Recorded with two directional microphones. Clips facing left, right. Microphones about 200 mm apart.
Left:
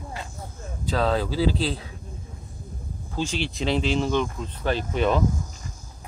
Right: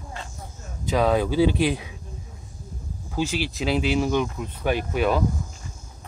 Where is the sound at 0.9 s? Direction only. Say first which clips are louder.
Right 3 dB; 15° right (ahead or behind).